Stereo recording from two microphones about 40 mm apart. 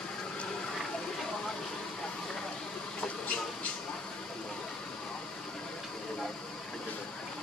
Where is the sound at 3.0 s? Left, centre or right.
Left.